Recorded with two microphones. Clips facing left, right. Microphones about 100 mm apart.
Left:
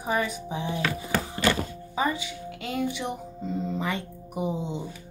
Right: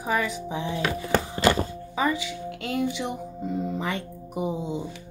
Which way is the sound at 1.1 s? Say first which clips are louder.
Right 4 dB; 20° right (ahead or behind).